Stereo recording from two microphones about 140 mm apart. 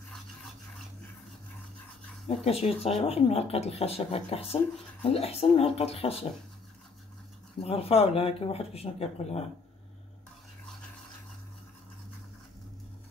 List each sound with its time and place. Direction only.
2.2 s speech: 45° left (ahead or behind)
7.6 s speech: 45° left (ahead or behind)